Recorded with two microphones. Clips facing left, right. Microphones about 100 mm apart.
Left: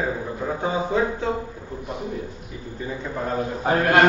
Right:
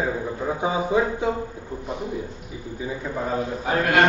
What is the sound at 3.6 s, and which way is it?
Speech, 35° left (ahead or behind).